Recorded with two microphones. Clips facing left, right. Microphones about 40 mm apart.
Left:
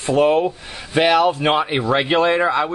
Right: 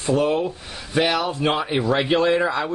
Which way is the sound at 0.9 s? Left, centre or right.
Left.